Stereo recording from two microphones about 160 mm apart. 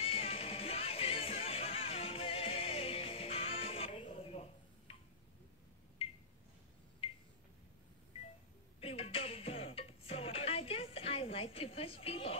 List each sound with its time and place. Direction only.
0.0 s music: 35° left (ahead or behind)
8.8 s music: 35° left (ahead or behind)